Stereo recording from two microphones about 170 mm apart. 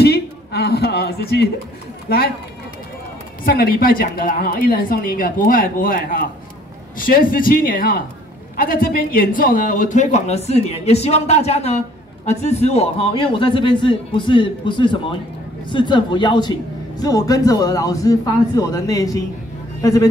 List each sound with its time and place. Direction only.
0.0 s a sound: 70° left (ahead or behind)
2.0 s speech: 65° left (ahead or behind)
3.4 s a woman's voice: 65° left (ahead or behind); by 20.1 s 20° left (ahead or behind)